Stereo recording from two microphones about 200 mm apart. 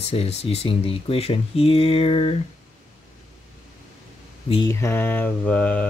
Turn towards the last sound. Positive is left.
turn(degrees=5)  # may be behind; listen again after turning